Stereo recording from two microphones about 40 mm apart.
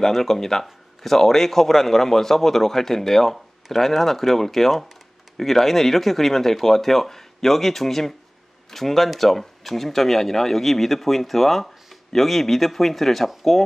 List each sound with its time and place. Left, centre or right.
0.0 s a man's voice: centre